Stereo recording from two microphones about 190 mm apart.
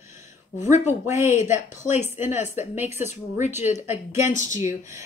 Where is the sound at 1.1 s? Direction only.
40° left (ahead or behind).